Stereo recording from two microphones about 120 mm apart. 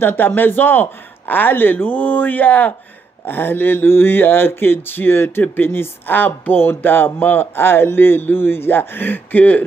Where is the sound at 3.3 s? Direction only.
15° left (ahead or behind).